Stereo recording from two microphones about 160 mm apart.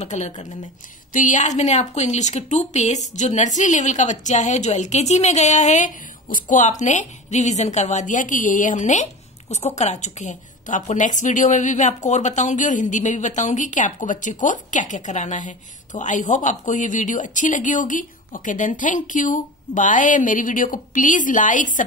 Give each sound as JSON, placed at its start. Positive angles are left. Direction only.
{"t": 0.0, "sound": "a woman's voice", "side_deg": 50}